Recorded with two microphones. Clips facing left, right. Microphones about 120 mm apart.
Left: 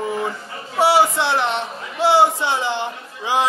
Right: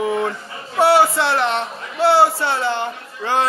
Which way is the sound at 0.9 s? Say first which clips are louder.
Right 1 dB; 15° left (ahead or behind).